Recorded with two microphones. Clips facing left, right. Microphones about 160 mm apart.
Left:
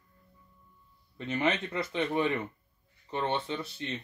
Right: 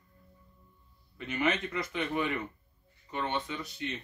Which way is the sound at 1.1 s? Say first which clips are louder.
Left 1 dB; 30° left (ahead or behind).